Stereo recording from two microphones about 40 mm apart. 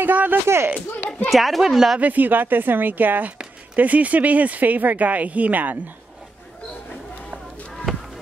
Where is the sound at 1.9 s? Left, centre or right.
Right.